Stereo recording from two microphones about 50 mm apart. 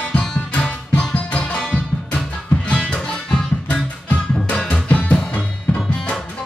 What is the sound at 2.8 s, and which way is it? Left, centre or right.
Music, centre.